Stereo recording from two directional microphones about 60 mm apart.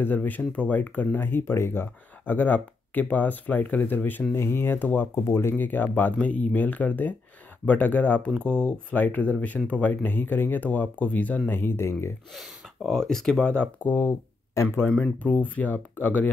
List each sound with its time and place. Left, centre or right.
0.0 s speech: left
2.2 s speech: left
5.2 s speech: left
6.1 s speech: centre
11.5 s speech: left
12.4 s speech: centre
15.2 s speech: left